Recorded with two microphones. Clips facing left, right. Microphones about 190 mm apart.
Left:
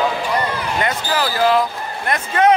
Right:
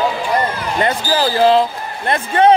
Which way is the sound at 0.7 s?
30° right (ahead or behind).